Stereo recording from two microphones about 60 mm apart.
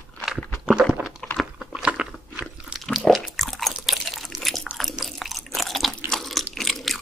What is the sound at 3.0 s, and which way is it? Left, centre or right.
Biting, centre.